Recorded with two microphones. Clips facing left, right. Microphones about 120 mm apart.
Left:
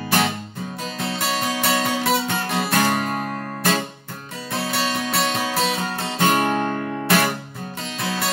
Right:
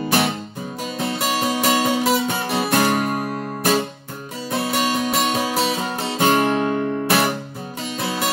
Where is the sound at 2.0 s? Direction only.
15° right (ahead or behind).